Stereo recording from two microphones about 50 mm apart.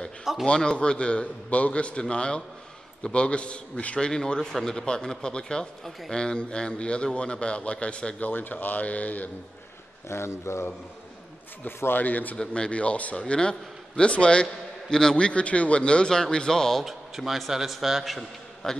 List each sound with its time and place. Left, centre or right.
0.2 s speech: centre
0.5 s a man's voice: centre
8.2 s speech: left
10.0 s speech: left
11.6 s speech: left
12.4 s a man's voice: centre
16.8 s a man's voice: centre